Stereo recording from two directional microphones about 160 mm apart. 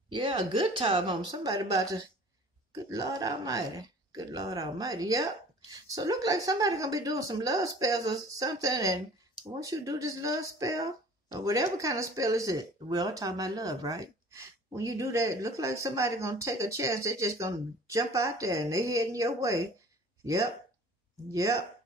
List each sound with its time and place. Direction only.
0.1 s a woman's voice: 30° right (ahead or behind)